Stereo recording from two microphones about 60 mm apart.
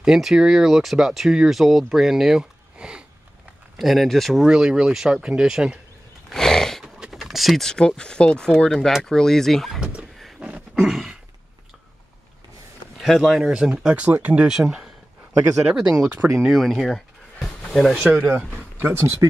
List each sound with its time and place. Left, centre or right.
0.0 s speech: centre
3.7 s speech: centre
4.5 s speech: centre
6.3 s horse: centre
6.8 s a sound: centre
7.7 s speech: centre
10.7 s a sound: centre
13.0 s speech: centre
16.3 s speech: centre
16.7 s a sound: centre
18.1 s speech: centre
18.8 s speech: right